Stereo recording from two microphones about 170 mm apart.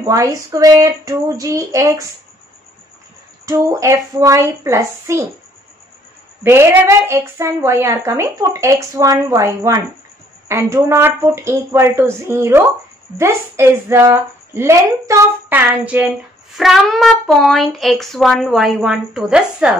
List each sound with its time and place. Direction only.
0.0 s speech: 20° right (ahead or behind)
3.4 s a woman's voice: 20° right (ahead or behind)
6.4 s a woman's voice: 15° right (ahead or behind)